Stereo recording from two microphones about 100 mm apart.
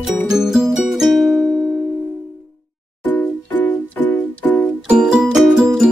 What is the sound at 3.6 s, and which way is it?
Keyboard, 15° left (ahead or behind).